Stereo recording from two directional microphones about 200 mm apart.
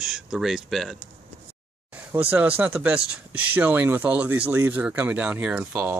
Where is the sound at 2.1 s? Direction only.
10° right (ahead or behind).